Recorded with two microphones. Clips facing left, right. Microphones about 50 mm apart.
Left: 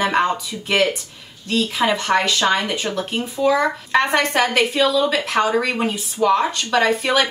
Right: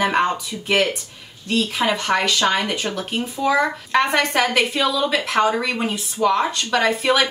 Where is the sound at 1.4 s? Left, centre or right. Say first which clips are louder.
Left 1 dB; centre.